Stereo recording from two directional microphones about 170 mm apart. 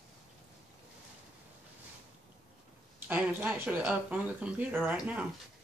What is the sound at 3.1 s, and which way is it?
Speech, 10° right (ahead or behind).